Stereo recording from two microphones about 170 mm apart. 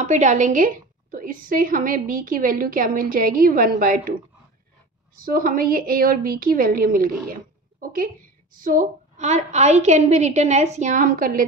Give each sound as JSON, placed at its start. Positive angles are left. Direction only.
{"t": 0.0, "sound": "a woman's voice", "side_deg": -45}
{"t": 5.2, "sound": "a woman's voice", "side_deg": -60}
{"t": 8.5, "sound": "a woman's voice", "side_deg": -50}